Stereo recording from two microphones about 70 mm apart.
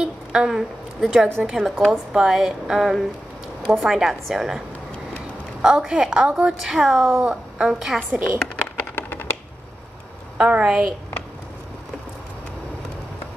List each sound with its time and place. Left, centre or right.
0.0 s a sound: centre
1.4 s a woman's voice: centre
7.1 s speech: right
7.5 s a woman's voice: centre
8.7 s a sound: left
10.3 s a woman's voice: centre